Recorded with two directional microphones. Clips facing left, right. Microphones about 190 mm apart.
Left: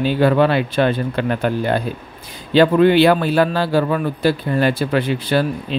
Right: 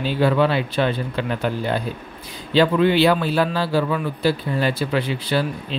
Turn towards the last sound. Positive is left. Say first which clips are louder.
# left 4 dB
turn(degrees=50)  # may be behind; listen again after turning